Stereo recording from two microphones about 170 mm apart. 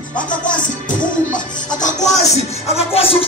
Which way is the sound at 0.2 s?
50° left (ahead or behind).